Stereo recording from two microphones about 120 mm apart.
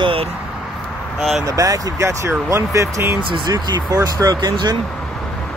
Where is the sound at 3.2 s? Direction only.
40° right (ahead or behind).